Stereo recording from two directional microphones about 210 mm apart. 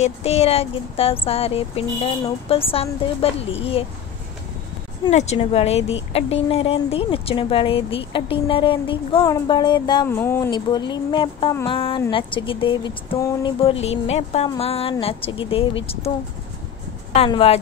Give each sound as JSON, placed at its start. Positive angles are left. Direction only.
{"t": 0.0, "sound": "speech", "side_deg": 30}
{"t": 5.0, "sound": "speech", "side_deg": 30}
{"t": 10.0, "sound": "speech", "side_deg": 10}
{"t": 10.5, "sound": "speech", "side_deg": 20}
{"t": 17.1, "sound": "speech", "side_deg": 30}